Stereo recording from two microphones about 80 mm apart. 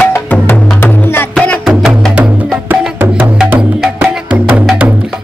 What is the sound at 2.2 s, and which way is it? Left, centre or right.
Music, centre.